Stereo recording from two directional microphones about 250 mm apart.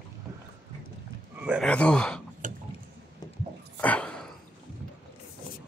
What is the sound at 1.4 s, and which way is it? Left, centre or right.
Speech, centre.